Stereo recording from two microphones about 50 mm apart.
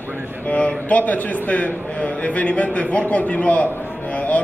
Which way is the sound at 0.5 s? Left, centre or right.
Left.